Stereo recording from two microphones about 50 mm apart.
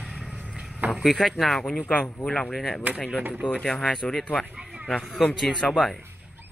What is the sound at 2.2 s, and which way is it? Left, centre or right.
Speech, left.